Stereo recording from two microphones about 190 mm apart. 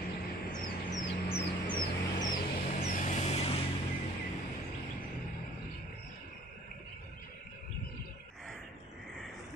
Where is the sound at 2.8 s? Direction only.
40° left (ahead or behind).